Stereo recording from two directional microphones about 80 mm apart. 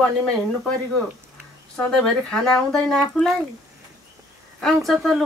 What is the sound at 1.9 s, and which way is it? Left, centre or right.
Speech, centre.